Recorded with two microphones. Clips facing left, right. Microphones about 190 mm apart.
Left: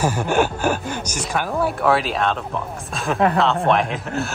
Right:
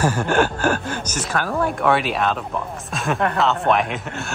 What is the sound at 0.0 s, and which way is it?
Speech, 10° left (ahead or behind).